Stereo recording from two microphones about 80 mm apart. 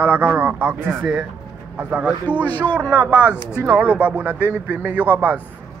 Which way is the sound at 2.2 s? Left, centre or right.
Left.